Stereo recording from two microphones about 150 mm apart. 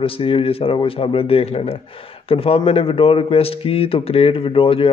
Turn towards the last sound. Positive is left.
turn(degrees=35)  # may be behind; listen again after turning